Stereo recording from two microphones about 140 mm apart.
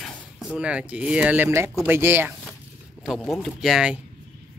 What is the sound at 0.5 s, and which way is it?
Speech, 10° right (ahead or behind).